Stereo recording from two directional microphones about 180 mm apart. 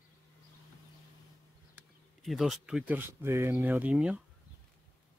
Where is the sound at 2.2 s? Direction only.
Centre (ahead or behind).